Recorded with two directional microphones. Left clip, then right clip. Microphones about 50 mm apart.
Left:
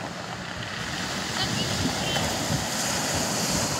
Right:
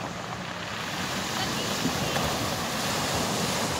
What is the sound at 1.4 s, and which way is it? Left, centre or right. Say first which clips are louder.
Waves: left 3 dB; centre.